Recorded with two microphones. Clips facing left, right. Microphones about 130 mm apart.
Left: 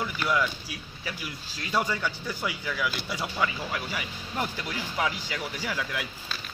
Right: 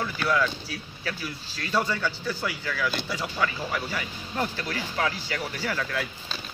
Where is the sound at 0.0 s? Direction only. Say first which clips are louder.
Right 2 dB; 15° left (ahead or behind).